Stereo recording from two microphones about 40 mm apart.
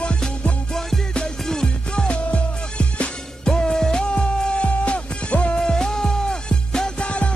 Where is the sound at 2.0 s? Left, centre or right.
Left.